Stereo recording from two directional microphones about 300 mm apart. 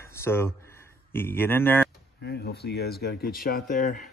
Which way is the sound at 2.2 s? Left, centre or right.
Left.